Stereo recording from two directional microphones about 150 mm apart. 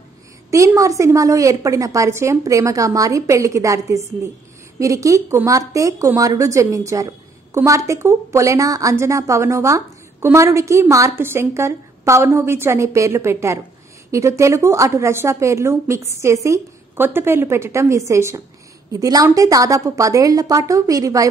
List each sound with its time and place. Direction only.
0.5 s speech: 20° right (ahead or behind)